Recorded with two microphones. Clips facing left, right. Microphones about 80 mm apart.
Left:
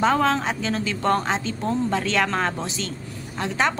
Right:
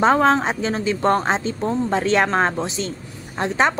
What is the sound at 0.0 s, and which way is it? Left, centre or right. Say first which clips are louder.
A woman's voice: right 4 dB; right.